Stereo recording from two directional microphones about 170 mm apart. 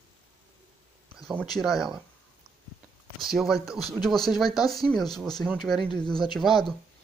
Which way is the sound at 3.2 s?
Centre (ahead or behind).